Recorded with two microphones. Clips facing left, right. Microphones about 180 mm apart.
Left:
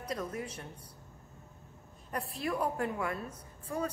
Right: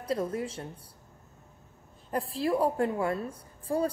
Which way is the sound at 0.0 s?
30° right (ahead or behind).